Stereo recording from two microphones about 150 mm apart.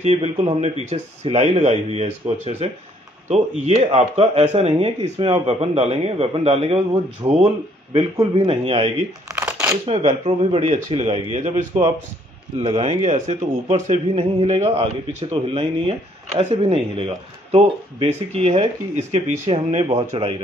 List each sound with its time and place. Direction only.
0.0 s a man's voice: 45° right (ahead or behind)
0.8 s a man's voice: 50° right (ahead or behind)
9.3 s crumpling: 10° right (ahead or behind)
9.8 s a man's voice: 45° right (ahead or behind)